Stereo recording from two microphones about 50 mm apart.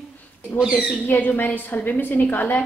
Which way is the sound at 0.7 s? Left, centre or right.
Left.